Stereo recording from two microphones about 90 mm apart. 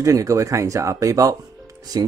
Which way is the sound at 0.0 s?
35° right (ahead or behind).